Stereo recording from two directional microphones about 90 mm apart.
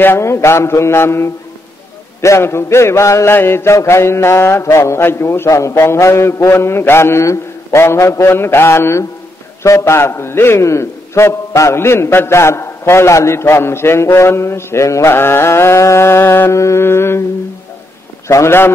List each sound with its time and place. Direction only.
0.0 s a man's voice: 25° left (ahead or behind)
2.2 s a sound: 30° left (ahead or behind)
3.3 s a man's voice: 25° left (ahead or behind)
18.3 s a man's voice: 30° left (ahead or behind)